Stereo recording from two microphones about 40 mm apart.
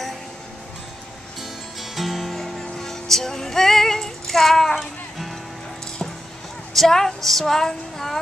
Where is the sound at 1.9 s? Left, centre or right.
Centre.